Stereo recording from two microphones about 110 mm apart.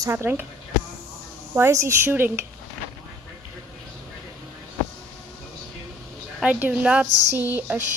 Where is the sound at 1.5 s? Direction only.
25° right (ahead or behind).